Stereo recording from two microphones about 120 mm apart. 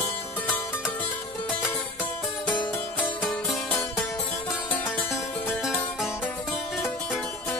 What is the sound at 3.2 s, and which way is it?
Music, centre (ahead or behind).